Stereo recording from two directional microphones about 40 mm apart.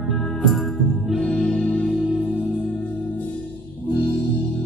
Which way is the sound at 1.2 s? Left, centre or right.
Left.